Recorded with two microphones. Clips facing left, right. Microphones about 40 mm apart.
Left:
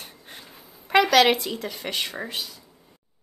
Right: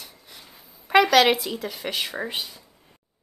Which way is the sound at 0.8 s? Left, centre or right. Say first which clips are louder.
Right 1 dB; centre.